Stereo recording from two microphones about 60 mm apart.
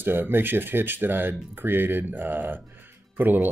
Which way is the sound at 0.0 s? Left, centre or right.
Right.